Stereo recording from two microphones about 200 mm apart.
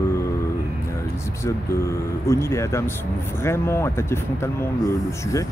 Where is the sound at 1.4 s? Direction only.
15° left (ahead or behind).